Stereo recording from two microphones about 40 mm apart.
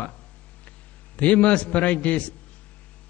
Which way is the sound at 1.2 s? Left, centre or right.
Left.